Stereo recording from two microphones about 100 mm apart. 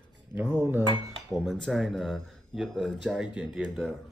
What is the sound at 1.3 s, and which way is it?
Speech, centre (ahead or behind).